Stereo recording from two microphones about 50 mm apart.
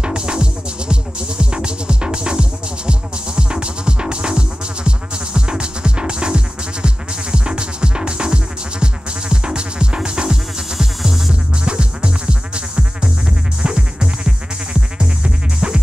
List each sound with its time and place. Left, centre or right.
0.0 s music: centre
11.6 s music: centre